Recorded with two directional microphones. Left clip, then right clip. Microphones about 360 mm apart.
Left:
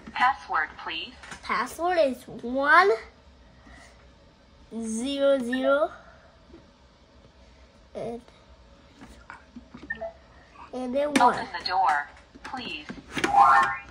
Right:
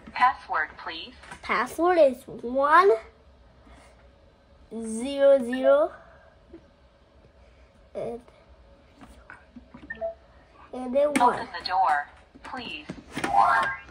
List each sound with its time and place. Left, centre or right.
0.1 s a woman's voice: centre
1.5 s speech: right
2.7 s a woman's voice: centre
4.7 s speech: centre
10.8 s speech: centre
11.1 s speech: centre